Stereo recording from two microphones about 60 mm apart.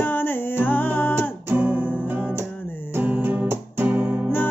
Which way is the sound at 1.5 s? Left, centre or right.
Right.